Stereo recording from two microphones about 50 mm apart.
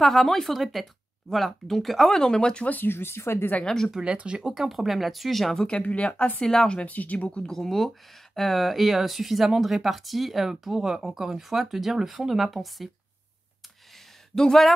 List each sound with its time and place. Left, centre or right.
0.0 s speech: centre
2.7 s speech: left
3.6 s speech: centre
4.0 s speech: right
4.6 s speech: centre
5.7 s speech: left
6.4 s speech: centre
6.9 s speech: left
7.4 s speech: centre
14.3 s speech: centre